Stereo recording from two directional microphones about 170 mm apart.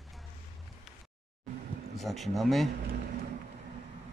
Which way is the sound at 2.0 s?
Centre (ahead or behind).